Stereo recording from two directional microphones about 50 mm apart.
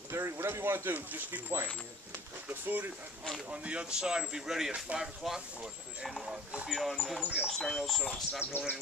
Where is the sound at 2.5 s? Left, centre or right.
Right.